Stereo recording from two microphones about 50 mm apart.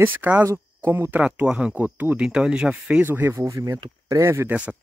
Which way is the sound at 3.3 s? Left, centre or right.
Right.